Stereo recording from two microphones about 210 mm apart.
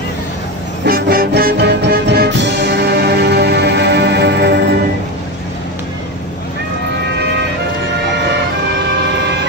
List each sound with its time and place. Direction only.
0.8 s music: 45° right (ahead or behind)